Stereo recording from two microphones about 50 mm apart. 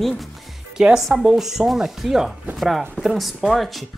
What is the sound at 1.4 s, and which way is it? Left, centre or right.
Speech, centre.